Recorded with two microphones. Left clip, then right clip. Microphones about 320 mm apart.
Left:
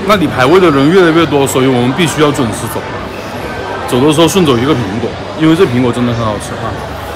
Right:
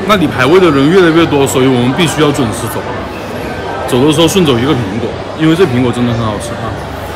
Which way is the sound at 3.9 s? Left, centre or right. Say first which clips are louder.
Even; centre.